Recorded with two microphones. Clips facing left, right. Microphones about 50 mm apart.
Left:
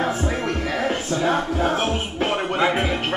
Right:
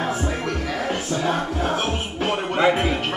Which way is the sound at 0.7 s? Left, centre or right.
Left.